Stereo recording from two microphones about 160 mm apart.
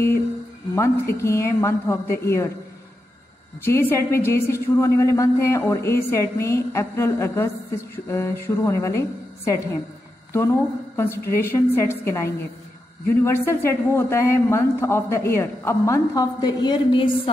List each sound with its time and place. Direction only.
0.7 s a man's voice: 15° left (ahead or behind)
3.6 s a man's voice: 15° left (ahead or behind); by 17.3 s 30° left (ahead or behind)